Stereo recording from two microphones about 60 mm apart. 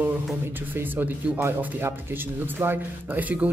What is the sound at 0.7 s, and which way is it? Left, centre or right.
Speech, right.